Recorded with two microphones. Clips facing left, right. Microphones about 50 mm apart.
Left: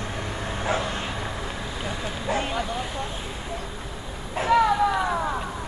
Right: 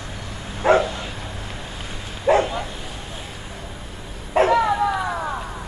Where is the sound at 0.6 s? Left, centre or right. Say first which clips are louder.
Right 11 dB; right.